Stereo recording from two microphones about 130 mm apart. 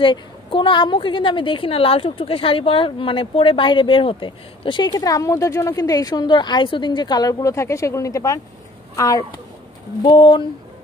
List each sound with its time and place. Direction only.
0.0 s a woman's voice: 40° left (ahead or behind)
10.0 s a woman's voice: 40° left (ahead or behind)